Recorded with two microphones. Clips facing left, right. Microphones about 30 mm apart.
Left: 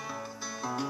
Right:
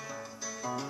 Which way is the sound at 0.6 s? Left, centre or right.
Left.